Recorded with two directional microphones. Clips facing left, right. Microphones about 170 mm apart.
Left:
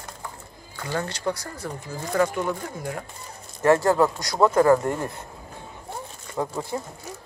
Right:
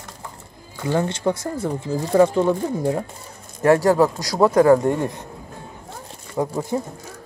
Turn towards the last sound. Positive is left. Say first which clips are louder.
# right 5 dB
turn(degrees=-15)  # may be behind; listen again after turning